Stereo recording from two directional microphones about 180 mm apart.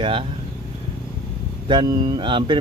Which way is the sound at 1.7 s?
25° right (ahead or behind).